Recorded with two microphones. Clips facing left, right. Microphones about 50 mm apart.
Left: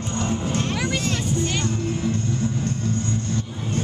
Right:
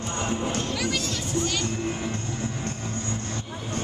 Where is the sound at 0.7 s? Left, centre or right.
Centre.